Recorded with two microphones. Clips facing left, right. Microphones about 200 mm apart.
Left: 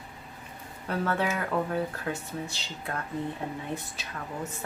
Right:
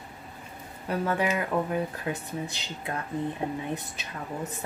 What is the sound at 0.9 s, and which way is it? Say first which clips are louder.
Speech: right 2 dB; 15° right (ahead or behind).